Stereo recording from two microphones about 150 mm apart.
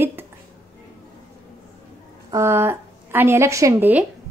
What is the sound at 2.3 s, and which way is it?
A woman's voice, 20° right (ahead or behind).